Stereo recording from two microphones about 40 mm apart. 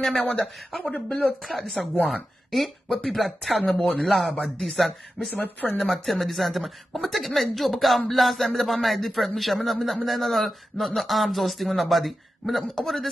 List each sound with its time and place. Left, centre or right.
0.4 s speech: centre
0.9 s speech: left
1.4 s speech: centre
5.3 s speech: left
5.9 s speech: centre